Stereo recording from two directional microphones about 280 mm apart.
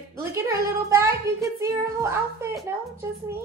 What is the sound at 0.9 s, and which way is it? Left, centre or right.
A child's voice, centre.